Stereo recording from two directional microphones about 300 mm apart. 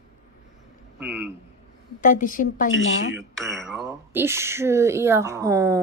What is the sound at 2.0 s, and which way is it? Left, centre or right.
Speech, left.